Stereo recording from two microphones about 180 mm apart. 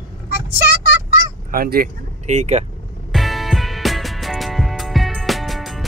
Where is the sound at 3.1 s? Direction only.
Centre (ahead or behind).